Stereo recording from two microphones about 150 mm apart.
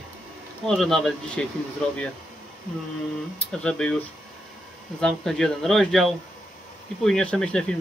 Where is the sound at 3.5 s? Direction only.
5° left (ahead or behind).